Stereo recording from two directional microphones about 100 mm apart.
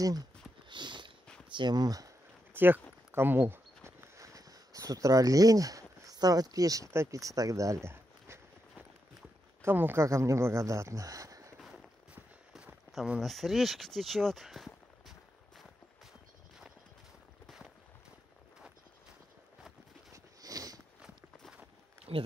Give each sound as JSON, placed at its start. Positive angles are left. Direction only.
{"t": 0.0, "sound": "speech", "side_deg": -40}
{"t": 0.7, "sound": "horse", "side_deg": -50}
{"t": 1.5, "sound": "speech", "side_deg": -50}
{"t": 2.5, "sound": "speech", "side_deg": -20}
{"t": 3.1, "sound": "a sound", "side_deg": -20}
{"t": 4.2, "sound": "speech", "side_deg": -35}
{"t": 9.6, "sound": "speech", "side_deg": -20}
{"t": 11.6, "sound": "a sound", "side_deg": -10}
{"t": 12.9, "sound": "speech", "side_deg": -5}
{"t": 16.1, "sound": "clip-clop", "side_deg": -5}
{"t": 20.4, "sound": "a sound", "side_deg": -40}
{"t": 22.1, "sound": "speech", "side_deg": -85}